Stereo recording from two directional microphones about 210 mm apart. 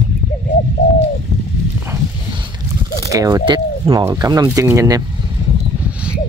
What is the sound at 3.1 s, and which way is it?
Speech, 15° right (ahead or behind).